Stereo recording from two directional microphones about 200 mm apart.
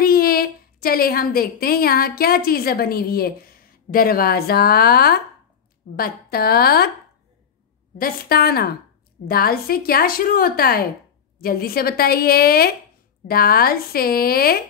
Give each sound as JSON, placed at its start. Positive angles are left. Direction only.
{"t": 0.0, "sound": "a woman's voice", "side_deg": 50}
{"t": 8.0, "sound": "a woman's voice", "side_deg": 50}